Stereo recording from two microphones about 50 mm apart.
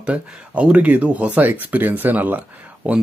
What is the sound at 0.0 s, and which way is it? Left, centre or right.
Speech, right.